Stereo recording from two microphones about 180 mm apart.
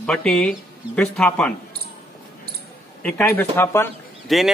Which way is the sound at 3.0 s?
10° left (ahead or behind).